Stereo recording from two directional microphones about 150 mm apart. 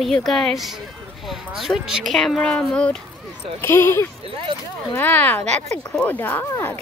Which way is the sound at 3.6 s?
15° left (ahead or behind).